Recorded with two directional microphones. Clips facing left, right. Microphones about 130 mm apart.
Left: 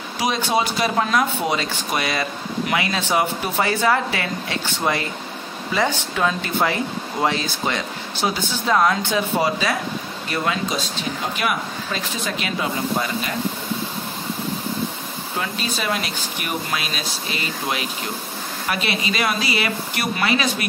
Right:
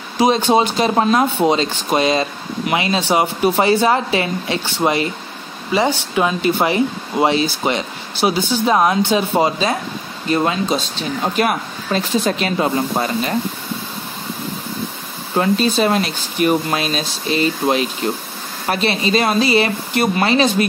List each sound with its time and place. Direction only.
0.2 s speech: 25° right (ahead or behind)
5.7 s speech: 15° right (ahead or behind)
11.3 s speech: 40° right (ahead or behind)
15.3 s speech: 40° right (ahead or behind)